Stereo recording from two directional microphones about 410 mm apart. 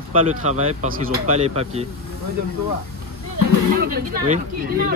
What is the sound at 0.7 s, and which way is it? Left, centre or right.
Speech, centre.